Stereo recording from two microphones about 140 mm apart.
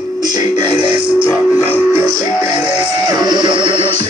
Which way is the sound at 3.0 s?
30° right (ahead or behind).